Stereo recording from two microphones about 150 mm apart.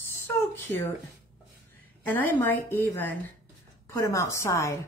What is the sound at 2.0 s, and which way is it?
A woman's voice, 10° left (ahead or behind).